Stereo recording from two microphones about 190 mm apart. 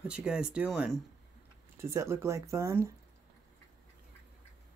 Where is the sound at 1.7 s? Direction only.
15° right (ahead or behind).